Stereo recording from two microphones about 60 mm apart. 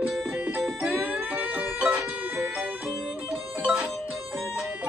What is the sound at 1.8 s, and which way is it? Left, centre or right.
Music, centre.